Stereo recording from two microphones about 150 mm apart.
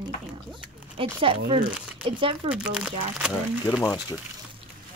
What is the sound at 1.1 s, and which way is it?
Speech, 35° right (ahead or behind).